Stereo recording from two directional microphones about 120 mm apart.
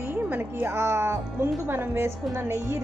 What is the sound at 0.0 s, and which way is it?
Speech, 15° right (ahead or behind).